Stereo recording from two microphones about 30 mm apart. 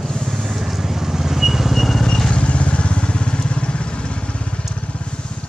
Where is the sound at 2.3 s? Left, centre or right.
Left.